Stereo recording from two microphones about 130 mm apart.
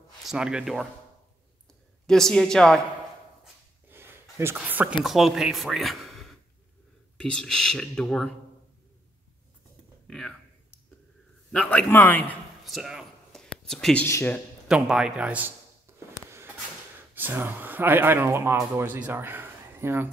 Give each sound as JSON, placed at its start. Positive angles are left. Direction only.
{"t": 0.2, "sound": "speech", "side_deg": -5}
{"t": 2.0, "sound": "speech", "side_deg": 5}
{"t": 3.9, "sound": "a sound", "side_deg": -20}
{"t": 4.6, "sound": "speech", "side_deg": -15}
{"t": 5.0, "sound": "speech", "side_deg": 0}
{"t": 10.0, "sound": "speech", "side_deg": 5}
{"t": 11.5, "sound": "a man's voice", "side_deg": 10}
{"t": 12.6, "sound": "a sound", "side_deg": -5}
{"t": 14.0, "sound": "a man's voice", "side_deg": 20}
{"t": 14.7, "sound": "a man's voice", "side_deg": -5}
{"t": 15.9, "sound": "a sound", "side_deg": -20}
{"t": 17.1, "sound": "speech", "side_deg": -15}